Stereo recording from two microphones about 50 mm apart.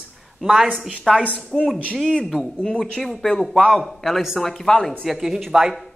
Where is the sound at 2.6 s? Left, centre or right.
Centre.